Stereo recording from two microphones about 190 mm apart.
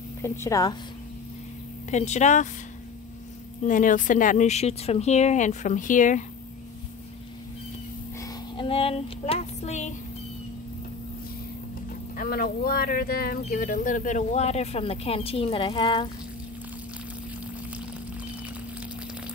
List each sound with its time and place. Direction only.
0.2 s a woman's voice: 15° left (ahead or behind)
1.9 s speech: 35° left (ahead or behind)
3.6 s speech: 45° left (ahead or behind)
8.2 s a sound: 25° left (ahead or behind)
12.2 s speech: 50° left (ahead or behind); by 16.1 s 25° left (ahead or behind)